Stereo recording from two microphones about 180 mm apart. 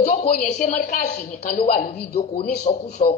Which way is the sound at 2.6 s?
40° left (ahead or behind).